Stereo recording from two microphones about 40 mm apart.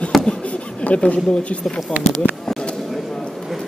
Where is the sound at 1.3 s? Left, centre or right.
Left.